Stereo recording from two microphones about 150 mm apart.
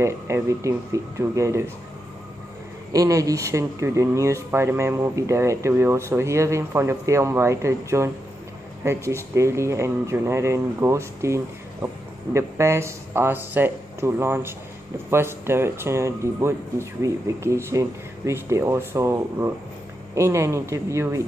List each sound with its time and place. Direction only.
0.0 s speech: 20° right (ahead or behind)
2.9 s speech: 25° right (ahead or behind)